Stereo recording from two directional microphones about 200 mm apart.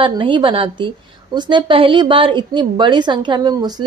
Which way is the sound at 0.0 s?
25° right (ahead or behind).